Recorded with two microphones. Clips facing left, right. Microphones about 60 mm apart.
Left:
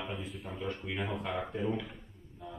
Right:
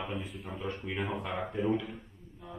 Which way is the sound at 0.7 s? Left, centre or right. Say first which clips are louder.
Right 1 dB; centre.